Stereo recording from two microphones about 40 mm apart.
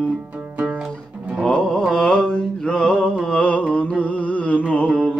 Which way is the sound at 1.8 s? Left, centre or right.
Centre.